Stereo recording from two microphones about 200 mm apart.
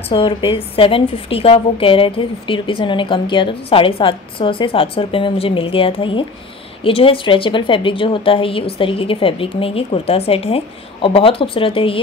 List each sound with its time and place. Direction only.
0.1 s a woman's voice: 25° left (ahead or behind)